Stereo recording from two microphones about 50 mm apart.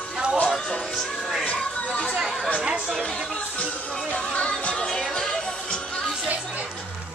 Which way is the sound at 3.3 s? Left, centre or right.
Left.